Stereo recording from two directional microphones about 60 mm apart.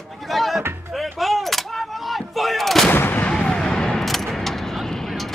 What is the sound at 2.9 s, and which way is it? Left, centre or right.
Artillery fire, left.